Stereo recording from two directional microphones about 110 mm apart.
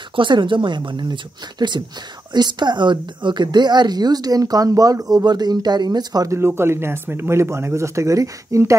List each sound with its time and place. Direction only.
0.1 s a woman's voice: 50° right (ahead or behind); by 8.7 s 30° right (ahead or behind)